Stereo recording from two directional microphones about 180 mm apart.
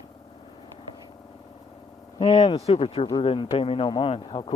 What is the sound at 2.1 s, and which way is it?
Speech, 30° left (ahead or behind).